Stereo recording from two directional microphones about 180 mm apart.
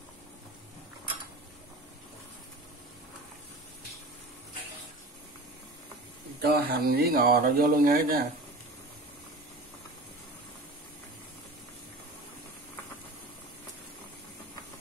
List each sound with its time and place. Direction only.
6.4 s speech: 60° right (ahead or behind)